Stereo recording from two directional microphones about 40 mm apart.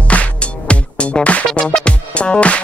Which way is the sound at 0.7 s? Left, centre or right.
Left.